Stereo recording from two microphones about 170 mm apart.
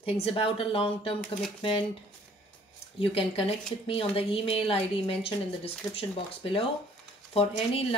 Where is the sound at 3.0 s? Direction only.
30° left (ahead or behind).